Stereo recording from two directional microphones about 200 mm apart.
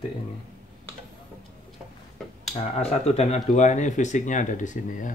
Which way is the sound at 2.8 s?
30° left (ahead or behind).